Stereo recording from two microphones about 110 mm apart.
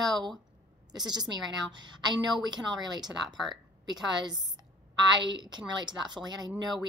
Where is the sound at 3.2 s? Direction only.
Centre (ahead or behind).